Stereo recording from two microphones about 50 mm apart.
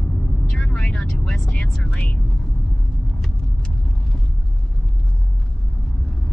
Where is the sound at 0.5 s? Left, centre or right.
Centre.